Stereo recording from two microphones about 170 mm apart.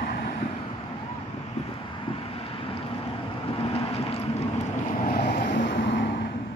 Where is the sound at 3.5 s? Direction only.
35° left (ahead or behind).